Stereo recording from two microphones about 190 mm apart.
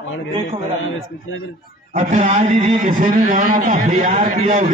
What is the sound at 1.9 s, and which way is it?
A man's voice, 35° right (ahead or behind).